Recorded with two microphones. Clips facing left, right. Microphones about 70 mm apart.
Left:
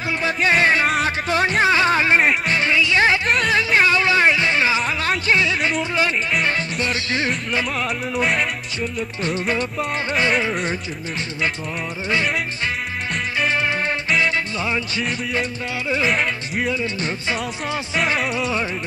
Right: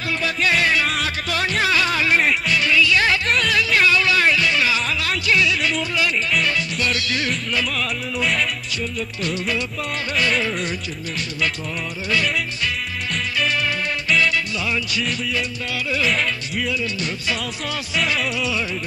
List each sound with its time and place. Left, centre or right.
0.2 s music: left
9.2 s music: left
12.1 s music: left
17.3 s speech: left
18.2 s music: left